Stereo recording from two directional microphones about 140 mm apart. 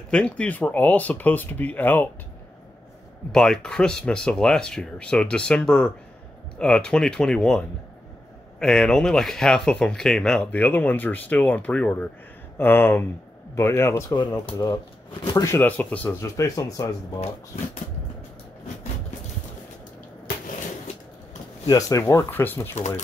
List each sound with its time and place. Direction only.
0.1 s speech: 10° left (ahead or behind)
3.3 s speech: 5° left (ahead or behind); by 17.2 s 25° left (ahead or behind)
21.6 s speech: 25° left (ahead or behind)
22.8 s speech: 55° left (ahead or behind)